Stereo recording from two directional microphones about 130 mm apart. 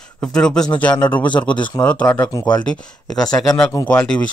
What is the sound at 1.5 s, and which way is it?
Speech, 35° left (ahead or behind).